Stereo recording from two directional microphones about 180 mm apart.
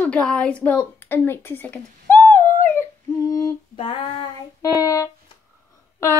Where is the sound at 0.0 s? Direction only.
5° left (ahead or behind).